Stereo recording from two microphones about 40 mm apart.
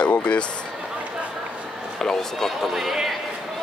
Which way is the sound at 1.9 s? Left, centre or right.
Centre.